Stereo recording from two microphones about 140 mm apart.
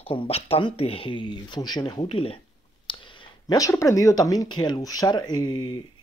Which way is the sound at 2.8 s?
35° left (ahead or behind).